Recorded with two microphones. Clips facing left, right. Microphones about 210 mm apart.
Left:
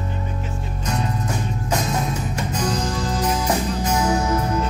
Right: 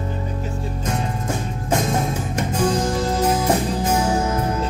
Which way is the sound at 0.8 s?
50° right (ahead or behind).